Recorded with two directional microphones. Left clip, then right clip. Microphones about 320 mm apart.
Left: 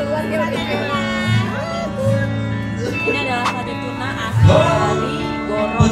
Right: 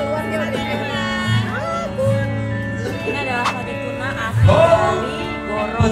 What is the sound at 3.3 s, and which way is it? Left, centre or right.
Music, centre.